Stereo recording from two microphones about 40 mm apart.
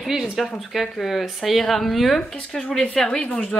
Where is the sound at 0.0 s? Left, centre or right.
Centre.